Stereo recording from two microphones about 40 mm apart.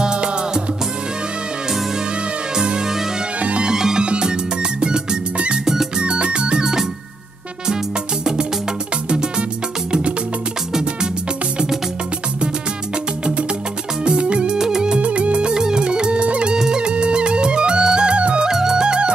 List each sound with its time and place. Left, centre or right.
0.0 s music: right
2.5 s music: right
3.7 s music: centre
4.0 s music: right
14.0 s music: right
14.6 s music: centre
15.0 s music: right
16.5 s music: centre
18.5 s music: centre